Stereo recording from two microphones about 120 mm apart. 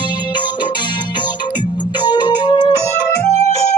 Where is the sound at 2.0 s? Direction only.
35° left (ahead or behind).